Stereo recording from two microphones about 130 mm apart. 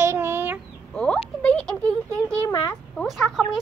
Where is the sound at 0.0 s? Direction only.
20° right (ahead or behind).